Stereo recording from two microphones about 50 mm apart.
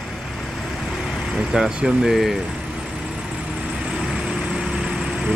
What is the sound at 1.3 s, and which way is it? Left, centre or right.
Speech, centre.